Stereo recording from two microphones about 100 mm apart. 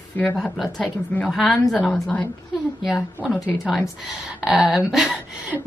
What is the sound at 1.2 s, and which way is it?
Speech, centre (ahead or behind).